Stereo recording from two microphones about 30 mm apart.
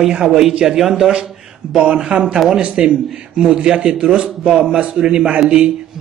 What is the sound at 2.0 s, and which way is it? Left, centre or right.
A man's voice, right.